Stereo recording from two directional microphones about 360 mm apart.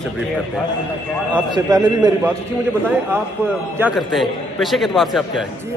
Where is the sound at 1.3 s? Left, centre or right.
Centre.